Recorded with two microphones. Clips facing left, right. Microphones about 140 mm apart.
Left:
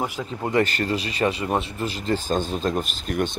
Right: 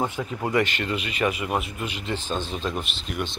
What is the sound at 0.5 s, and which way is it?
Speech, 35° left (ahead or behind).